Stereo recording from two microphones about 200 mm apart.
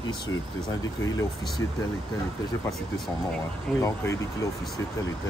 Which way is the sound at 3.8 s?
15° left (ahead or behind).